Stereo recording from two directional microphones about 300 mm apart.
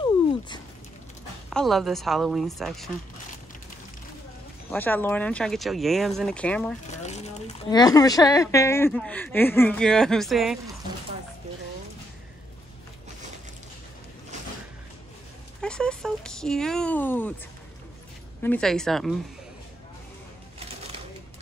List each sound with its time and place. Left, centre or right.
1.5 s speech: centre
4.6 s speech: centre
6.9 s speech: left; by 10.6 s centre
15.6 s a sound: centre
18.4 s speech: centre
20.5 s bird: centre